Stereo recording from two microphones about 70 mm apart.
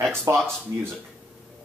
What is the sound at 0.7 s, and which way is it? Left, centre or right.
Speech, right.